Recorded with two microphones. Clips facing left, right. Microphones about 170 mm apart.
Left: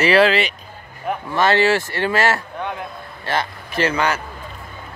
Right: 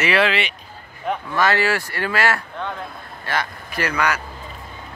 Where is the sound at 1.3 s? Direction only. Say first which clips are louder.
Left 4 dB; 25° left (ahead or behind).